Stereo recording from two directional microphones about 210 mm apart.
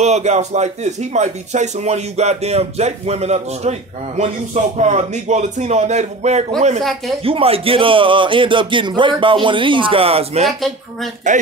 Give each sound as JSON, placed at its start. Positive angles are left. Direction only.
{"t": 0.0, "sound": "speech", "side_deg": -30}
{"t": 6.8, "sound": "speech", "side_deg": 0}
{"t": 7.2, "sound": "speech", "side_deg": -25}